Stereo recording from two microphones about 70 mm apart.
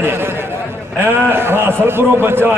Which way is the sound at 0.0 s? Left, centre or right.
Right.